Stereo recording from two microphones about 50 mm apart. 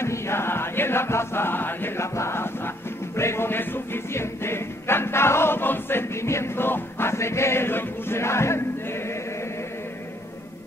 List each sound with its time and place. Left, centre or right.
0.0 s chant: left
2.0 s chant: left
3.2 s music: left